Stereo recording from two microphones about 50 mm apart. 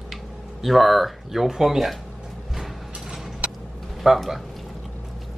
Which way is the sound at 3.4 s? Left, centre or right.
Centre.